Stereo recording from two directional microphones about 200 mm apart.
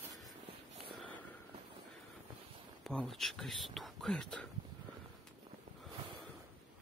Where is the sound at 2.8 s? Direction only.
5° left (ahead or behind).